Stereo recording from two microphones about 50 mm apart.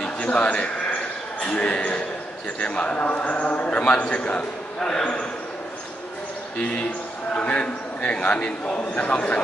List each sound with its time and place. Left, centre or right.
0.0 s a sound: left
1.4 s a man's voice: left
4.7 s speech: centre
7.3 s a man's voice: left